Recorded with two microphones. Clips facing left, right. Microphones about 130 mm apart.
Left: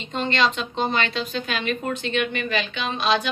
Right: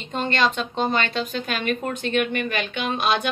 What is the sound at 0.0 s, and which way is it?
A woman's voice, 50° right (ahead or behind).